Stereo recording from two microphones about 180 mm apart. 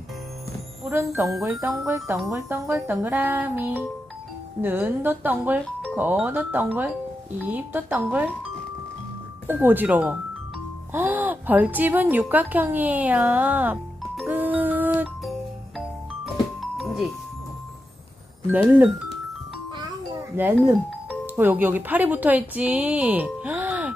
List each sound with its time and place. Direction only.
0.8 s speech: 15° right (ahead or behind)
9.5 s a woman's voice: 10° right (ahead or behind)
16.7 s music: centre (ahead or behind)
18.5 s speech: 10° right (ahead or behind)
20.2 s speech: 15° right (ahead or behind)